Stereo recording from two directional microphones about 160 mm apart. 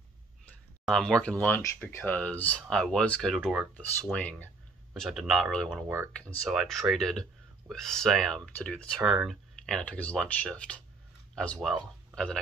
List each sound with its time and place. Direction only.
0.8 s speech: 5° left (ahead or behind)